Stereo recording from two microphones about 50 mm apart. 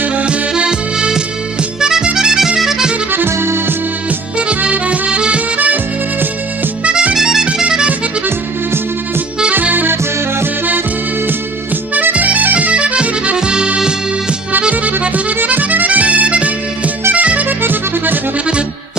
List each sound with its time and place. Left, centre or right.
0.0 s music: right
3.3 s accordion: right
4.4 s music: right
6.8 s music: right
7.2 s music: centre
9.5 s accordion: right
11.9 s accordion: right; by 13.9 s centre
14.7 s music: right
17.1 s accordion: right
17.6 s music: right